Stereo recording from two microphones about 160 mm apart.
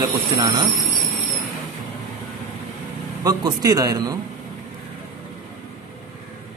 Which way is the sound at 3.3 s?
25° right (ahead or behind).